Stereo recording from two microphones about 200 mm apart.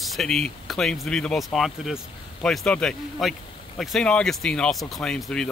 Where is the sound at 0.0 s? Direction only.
Centre (ahead or behind).